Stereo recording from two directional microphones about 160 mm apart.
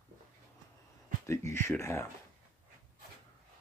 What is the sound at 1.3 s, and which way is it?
Speech, 15° left (ahead or behind).